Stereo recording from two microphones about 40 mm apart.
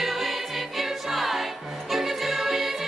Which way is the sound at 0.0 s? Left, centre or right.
Centre.